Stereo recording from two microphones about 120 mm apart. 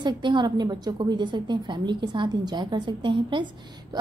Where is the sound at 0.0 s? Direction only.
40° right (ahead or behind).